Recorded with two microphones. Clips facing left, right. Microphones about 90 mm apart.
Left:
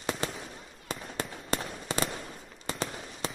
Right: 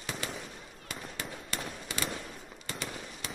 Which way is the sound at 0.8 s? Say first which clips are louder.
Left 5 dB; 35° left (ahead or behind).